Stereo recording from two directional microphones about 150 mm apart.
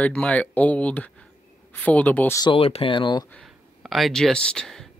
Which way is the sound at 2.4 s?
40° left (ahead or behind).